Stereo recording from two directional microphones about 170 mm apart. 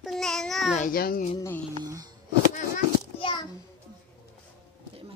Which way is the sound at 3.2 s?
25° left (ahead or behind).